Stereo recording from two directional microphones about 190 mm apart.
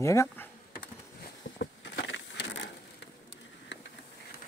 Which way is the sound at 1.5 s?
65° left (ahead or behind).